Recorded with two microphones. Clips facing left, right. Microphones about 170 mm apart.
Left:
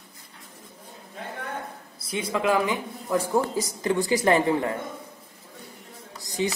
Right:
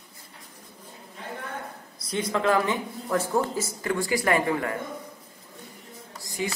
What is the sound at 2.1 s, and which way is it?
Speech, 10° left (ahead or behind).